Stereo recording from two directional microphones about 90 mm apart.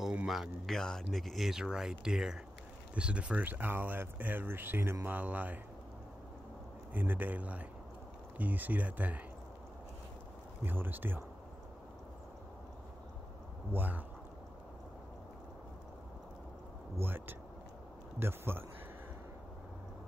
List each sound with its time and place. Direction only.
0.3 s speech: centre (ahead or behind); by 5.6 s 20° right (ahead or behind)
6.9 s speech: 20° right (ahead or behind)
10.6 s speech: 20° right (ahead or behind)
13.7 s speech: 20° right (ahead or behind)
17.0 s speech: 25° right (ahead or behind)